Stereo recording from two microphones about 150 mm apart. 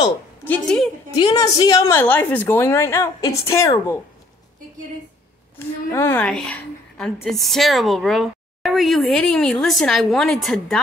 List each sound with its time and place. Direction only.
0.4 s a woman's voice: 10° left (ahead or behind)
1.1 s a woman's voice: 25° left (ahead or behind)
5.9 s a woman's voice: 15° left (ahead or behind)